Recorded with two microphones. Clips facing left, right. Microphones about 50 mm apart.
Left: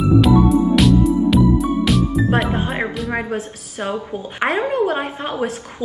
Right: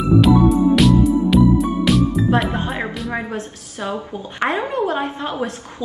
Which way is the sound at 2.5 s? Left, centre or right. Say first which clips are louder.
Left 2 dB; centre.